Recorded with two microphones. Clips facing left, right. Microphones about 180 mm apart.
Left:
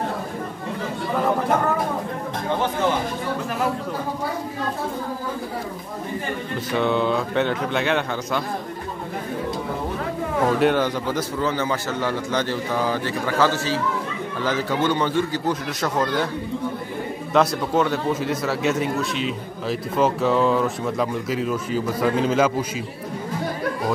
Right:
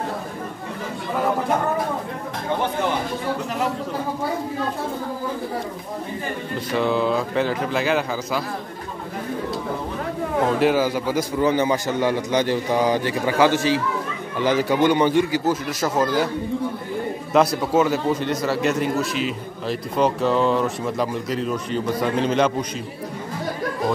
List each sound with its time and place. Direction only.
6.7 s speech: centre (ahead or behind)
10.6 s a man's voice: 5° right (ahead or behind)
17.3 s speech: centre (ahead or behind)